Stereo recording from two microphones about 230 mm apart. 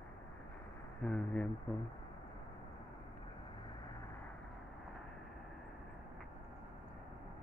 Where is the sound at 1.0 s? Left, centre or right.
Centre.